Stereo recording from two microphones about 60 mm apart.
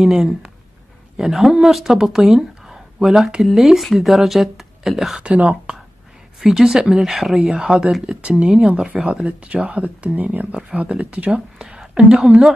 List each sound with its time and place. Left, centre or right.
0.0 s speech: centre
5.2 s speech: right
6.4 s speech: centre
7.3 s speech: centre
11.5 s a sound: centre